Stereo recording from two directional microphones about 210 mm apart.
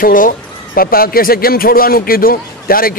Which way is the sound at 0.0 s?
40° left (ahead or behind).